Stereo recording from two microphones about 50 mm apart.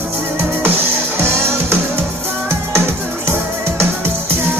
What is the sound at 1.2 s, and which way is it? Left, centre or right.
Music, right.